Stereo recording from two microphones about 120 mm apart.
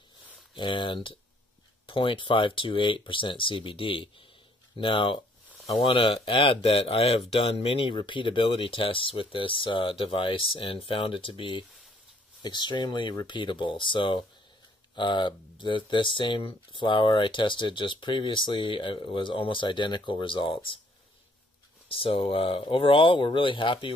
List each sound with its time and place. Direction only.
0.6 s speech: 45° left (ahead or behind)
21.8 s speech: 50° left (ahead or behind)